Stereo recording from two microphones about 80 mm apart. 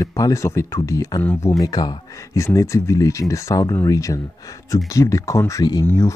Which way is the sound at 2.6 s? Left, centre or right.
Left.